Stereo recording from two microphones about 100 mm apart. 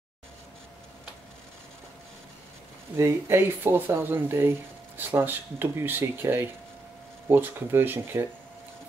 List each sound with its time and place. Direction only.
3.0 s speech: 25° right (ahead or behind)